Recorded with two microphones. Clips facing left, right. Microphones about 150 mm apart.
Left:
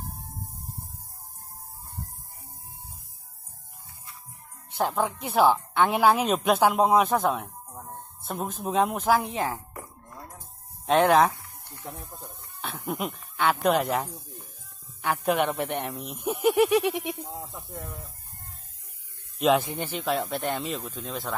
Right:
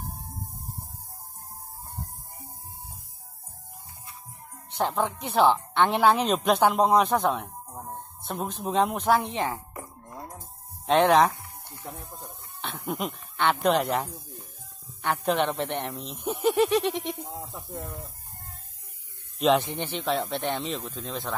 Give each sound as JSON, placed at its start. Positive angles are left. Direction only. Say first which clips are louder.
{"t": 4.7, "sound": "speech", "louder": "even", "side_deg": 5}
{"t": 7.7, "sound": "a sound", "louder": "right 4 dB", "side_deg": -10}
{"t": 8.2, "sound": "speech", "louder": "even", "side_deg": 0}
{"t": 10.0, "sound": "music", "louder": "right 3 dB", "side_deg": -15}
{"t": 10.9, "sound": "speech", "louder": "even", "side_deg": 0}
{"t": 11.6, "sound": "music", "louder": "left 1 dB", "side_deg": -15}
{"t": 12.6, "sound": "speech", "louder": "even", "side_deg": 0}
{"t": 17.5, "sound": "speech", "louder": "right 2 dB", "side_deg": -15}
{"t": 19.3, "sound": "speech", "louder": "even", "side_deg": 0}